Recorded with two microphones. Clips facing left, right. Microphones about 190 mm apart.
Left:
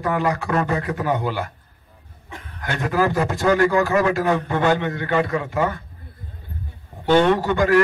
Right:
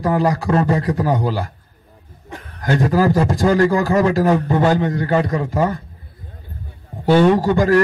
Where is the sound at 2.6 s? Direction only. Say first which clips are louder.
Right 5 dB; 35° right (ahead or behind).